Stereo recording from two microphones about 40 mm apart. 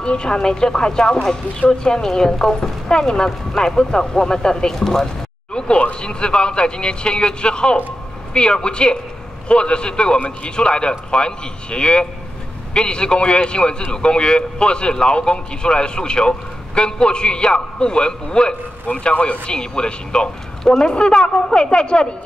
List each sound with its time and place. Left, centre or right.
0.0 s a man's voice: left
5.5 s a sound: left
5.9 s a man's voice: left